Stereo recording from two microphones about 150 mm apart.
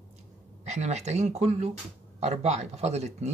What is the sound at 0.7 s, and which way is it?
Speech, 45° right (ahead or behind).